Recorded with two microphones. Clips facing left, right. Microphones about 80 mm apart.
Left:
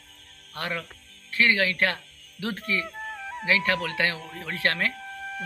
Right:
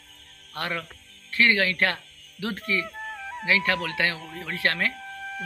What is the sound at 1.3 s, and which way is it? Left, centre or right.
Speech, centre.